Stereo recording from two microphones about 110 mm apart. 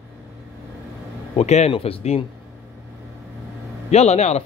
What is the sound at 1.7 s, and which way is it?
Speech, 60° left (ahead or behind).